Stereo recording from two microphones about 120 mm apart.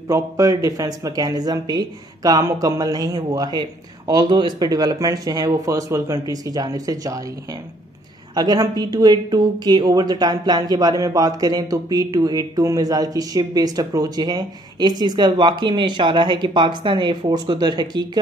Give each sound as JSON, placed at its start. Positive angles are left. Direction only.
{"t": 0.1, "sound": "speech", "side_deg": -30}
{"t": 8.4, "sound": "speech", "side_deg": -35}